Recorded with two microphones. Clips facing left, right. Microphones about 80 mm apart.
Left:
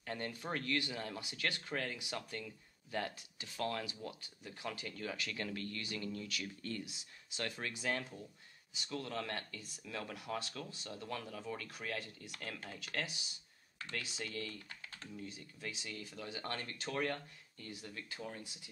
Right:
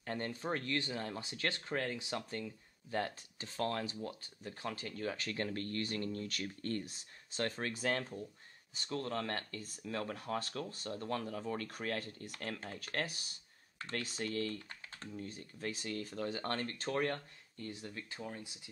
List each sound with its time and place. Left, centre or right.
0.0 s speech: right
17.8 s speech: right